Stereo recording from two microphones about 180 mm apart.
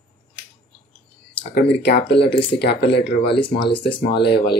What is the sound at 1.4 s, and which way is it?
Speech, 60° left (ahead or behind).